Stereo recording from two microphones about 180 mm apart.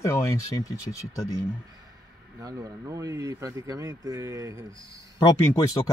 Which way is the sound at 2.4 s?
20° right (ahead or behind).